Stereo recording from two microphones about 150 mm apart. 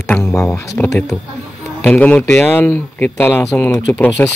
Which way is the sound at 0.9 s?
5° left (ahead or behind).